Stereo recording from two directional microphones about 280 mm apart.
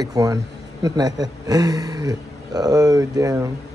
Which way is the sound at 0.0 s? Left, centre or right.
Centre.